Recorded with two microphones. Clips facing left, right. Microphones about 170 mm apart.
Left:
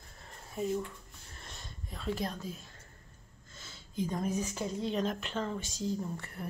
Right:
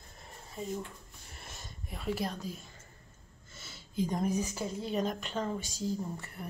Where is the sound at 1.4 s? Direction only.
5° right (ahead or behind).